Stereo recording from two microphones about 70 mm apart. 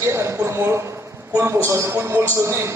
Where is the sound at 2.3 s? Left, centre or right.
Right.